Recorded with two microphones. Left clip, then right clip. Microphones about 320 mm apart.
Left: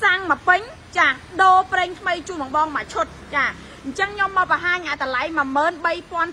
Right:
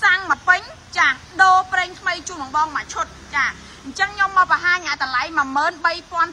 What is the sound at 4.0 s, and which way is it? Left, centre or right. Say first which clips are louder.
A woman's voice: right 3 dB; centre.